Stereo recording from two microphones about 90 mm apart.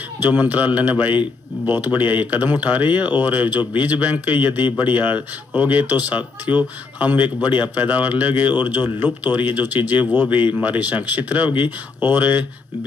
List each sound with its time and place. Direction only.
0.2 s speech: 20° right (ahead or behind)